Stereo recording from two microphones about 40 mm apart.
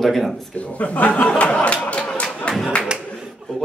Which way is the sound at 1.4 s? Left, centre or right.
Left.